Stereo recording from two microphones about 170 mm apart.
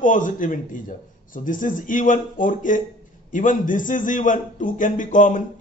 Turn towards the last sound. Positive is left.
turn(degrees=50)  # may be behind; listen again after turning